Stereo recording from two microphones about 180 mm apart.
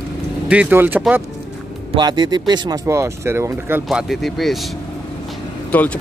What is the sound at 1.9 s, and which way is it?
Speech, 25° right (ahead or behind).